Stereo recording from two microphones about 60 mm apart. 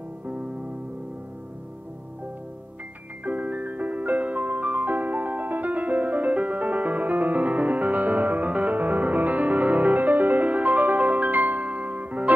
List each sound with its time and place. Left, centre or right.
3.3 s music: right